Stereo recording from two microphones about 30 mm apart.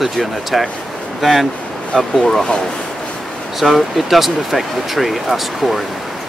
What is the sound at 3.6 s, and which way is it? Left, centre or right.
Speech, centre.